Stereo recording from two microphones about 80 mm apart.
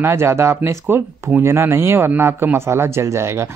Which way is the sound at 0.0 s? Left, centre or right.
Right.